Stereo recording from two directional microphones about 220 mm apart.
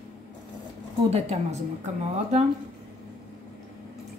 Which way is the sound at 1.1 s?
30° right (ahead or behind).